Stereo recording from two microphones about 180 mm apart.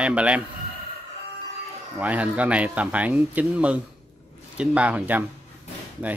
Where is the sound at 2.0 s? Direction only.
10° right (ahead or behind).